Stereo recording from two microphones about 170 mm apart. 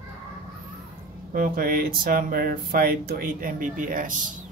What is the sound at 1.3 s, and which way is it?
Speech, 55° right (ahead or behind).